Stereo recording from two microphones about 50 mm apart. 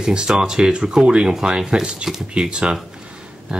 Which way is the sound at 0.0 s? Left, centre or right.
Centre.